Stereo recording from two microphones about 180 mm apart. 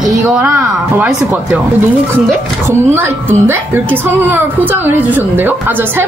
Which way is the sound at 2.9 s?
10° right (ahead or behind).